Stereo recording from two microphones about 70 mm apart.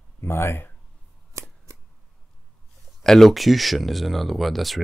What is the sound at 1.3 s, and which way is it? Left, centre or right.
Scissors, right.